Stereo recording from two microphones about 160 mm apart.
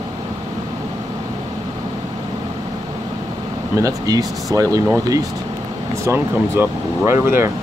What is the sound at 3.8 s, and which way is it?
Speech, 20° right (ahead or behind).